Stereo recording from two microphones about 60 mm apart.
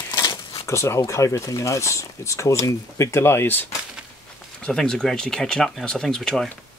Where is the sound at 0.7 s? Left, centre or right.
Left.